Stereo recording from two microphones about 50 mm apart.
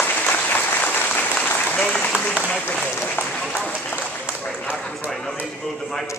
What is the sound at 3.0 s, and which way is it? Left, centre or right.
Speech, left.